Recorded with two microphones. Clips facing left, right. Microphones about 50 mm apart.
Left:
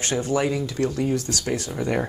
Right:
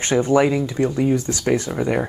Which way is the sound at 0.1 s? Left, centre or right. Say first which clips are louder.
Right 7 dB; right.